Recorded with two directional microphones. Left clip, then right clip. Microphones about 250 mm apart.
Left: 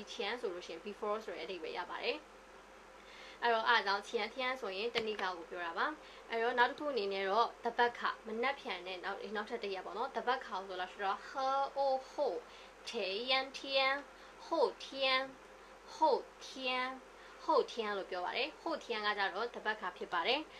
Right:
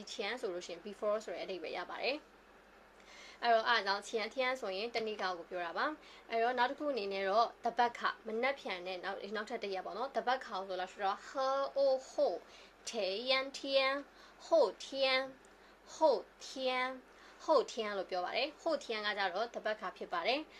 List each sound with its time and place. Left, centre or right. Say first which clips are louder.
0.0 s speech: even; right
3.3 s a child's voice: right 1 dB; right